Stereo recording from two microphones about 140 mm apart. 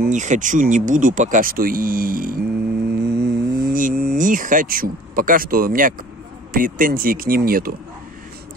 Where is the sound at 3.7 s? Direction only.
80° right.